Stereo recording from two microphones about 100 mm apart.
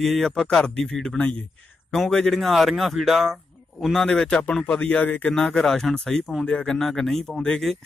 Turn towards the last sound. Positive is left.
turn(degrees=5)  # may be behind; listen again after turning